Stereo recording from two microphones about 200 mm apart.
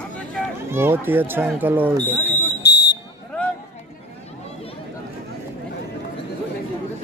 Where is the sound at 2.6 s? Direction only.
55° left (ahead or behind).